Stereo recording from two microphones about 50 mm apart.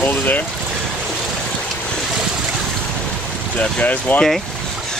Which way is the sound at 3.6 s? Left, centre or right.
Left.